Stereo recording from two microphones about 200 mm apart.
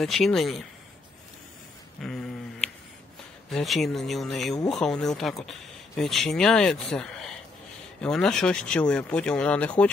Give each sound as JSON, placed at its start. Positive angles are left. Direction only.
{"t": 0.0, "sound": "speech", "side_deg": 0}
{"t": 2.0, "sound": "a sound", "side_deg": 0}
{"t": 3.4, "sound": "speech", "side_deg": 0}